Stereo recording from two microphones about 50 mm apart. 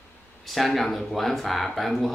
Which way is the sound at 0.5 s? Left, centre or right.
Centre.